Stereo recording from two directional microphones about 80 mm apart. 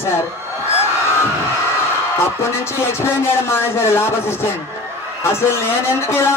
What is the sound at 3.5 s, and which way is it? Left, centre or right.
Speech, left.